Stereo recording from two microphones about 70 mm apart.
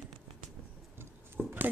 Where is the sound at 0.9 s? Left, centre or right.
Right.